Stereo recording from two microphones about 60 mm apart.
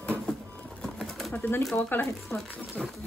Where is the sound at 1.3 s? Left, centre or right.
Left.